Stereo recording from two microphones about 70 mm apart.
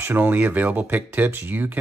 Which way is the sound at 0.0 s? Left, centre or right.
Right.